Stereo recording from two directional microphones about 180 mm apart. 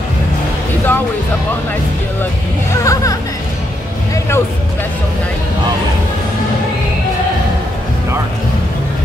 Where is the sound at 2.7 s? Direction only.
20° left (ahead or behind).